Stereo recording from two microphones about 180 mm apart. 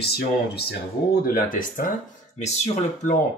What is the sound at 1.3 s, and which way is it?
Speech, 50° left (ahead or behind).